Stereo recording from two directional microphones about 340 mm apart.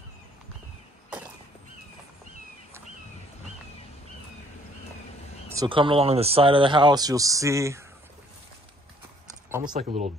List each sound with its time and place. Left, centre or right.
5.5 s speech: centre
9.7 s speech: centre